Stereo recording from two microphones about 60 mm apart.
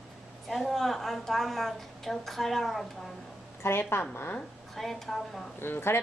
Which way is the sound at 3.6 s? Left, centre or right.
Left.